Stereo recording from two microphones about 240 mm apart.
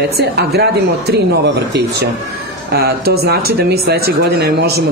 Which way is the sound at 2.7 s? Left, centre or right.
Right.